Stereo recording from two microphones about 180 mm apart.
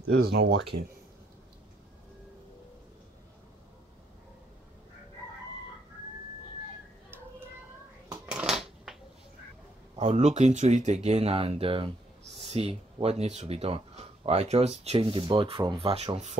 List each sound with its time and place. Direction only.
0.1 s speech: 65° right (ahead or behind)
8.1 s shuffling cards: 5° right (ahead or behind)
9.9 s speech: 40° right (ahead or behind)